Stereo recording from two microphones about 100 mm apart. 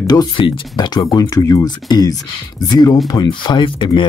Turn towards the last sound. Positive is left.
turn(degrees=55)  # may be behind; listen again after turning